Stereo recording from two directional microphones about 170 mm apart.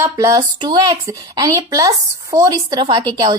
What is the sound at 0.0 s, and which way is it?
A woman's voice, 20° right (ahead or behind).